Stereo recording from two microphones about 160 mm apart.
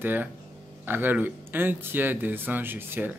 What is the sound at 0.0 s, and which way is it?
Speech, 10° right (ahead or behind).